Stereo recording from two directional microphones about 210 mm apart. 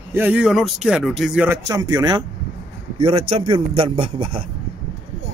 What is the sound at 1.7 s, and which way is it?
A man's voice, 15° right (ahead or behind).